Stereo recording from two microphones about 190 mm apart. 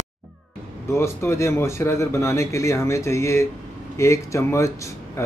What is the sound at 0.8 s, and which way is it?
A man's voice, 15° left (ahead or behind).